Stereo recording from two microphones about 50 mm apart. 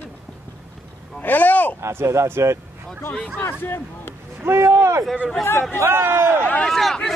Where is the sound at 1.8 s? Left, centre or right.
Right.